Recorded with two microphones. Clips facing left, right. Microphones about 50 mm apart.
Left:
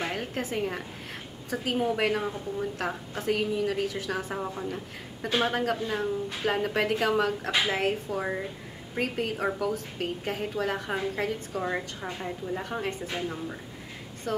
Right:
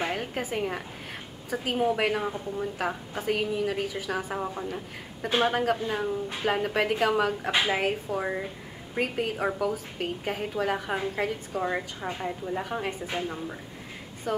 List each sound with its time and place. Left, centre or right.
0.0 s a woman's voice: centre